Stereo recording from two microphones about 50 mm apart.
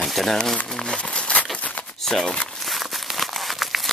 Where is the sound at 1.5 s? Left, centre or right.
Left.